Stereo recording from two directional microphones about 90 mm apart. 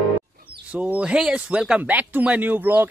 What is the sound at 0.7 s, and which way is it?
Speech, 15° right (ahead or behind).